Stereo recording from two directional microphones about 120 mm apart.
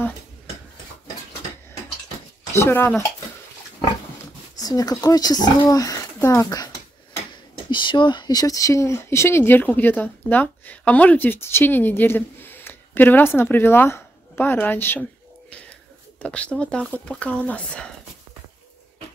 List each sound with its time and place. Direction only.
2.5 s speech: 20° left (ahead or behind)
4.6 s speech: 30° left (ahead or behind)
7.7 s speech: 40° left (ahead or behind); by 15.0 s 15° left (ahead or behind)
16.2 s speech: 10° left (ahead or behind)